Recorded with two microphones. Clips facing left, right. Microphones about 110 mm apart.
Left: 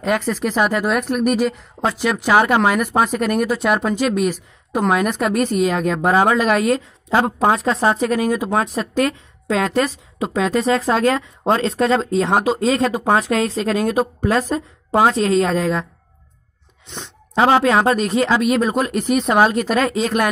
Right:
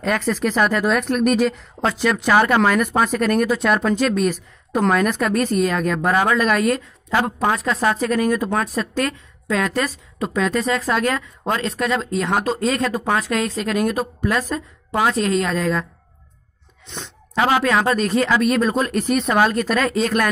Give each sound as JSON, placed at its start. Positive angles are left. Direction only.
{"t": 0.0, "sound": "a woman's voice", "side_deg": 15}
{"t": 16.9, "sound": "a sound", "side_deg": 15}
{"t": 17.4, "sound": "a woman's voice", "side_deg": 30}